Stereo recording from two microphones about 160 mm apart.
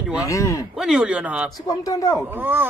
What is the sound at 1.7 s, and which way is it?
Speech, 20° left (ahead or behind).